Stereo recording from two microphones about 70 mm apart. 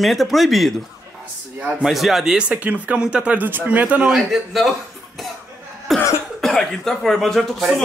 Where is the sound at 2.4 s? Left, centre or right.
Centre.